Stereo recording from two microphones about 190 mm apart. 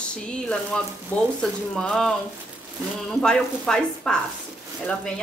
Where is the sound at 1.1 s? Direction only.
10° left (ahead or behind).